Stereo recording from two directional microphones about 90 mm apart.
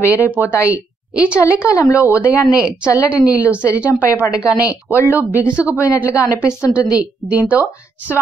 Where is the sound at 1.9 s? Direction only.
15° right (ahead or behind).